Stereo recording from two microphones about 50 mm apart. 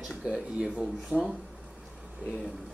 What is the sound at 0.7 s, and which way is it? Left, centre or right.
Speech, centre.